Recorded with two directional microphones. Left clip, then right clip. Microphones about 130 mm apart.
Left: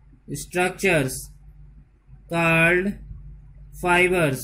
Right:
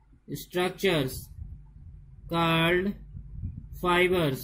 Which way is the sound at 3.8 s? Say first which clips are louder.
Left 5 dB; 20° right (ahead or behind).